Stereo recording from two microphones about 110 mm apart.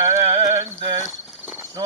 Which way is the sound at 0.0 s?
25° right (ahead or behind).